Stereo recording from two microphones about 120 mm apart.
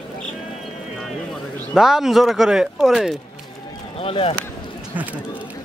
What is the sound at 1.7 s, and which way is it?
Speech, 5° right (ahead or behind).